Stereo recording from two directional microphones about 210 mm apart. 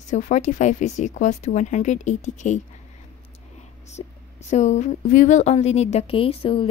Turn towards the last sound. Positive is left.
turn(degrees=25)  # may be behind; listen again after turning